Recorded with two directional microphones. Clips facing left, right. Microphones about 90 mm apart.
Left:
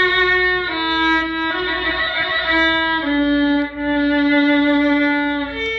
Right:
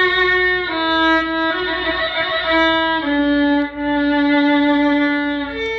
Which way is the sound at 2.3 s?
40° right (ahead or behind).